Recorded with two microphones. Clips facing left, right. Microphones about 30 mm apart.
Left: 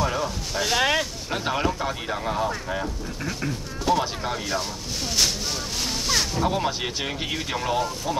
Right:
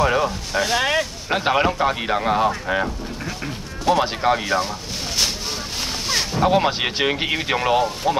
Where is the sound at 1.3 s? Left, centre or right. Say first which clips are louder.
Right 7 dB; right.